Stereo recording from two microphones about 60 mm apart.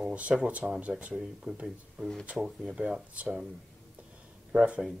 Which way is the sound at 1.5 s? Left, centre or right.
Centre.